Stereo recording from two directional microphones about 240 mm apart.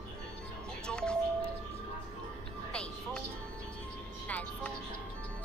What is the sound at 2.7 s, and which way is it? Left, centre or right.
Music, centre.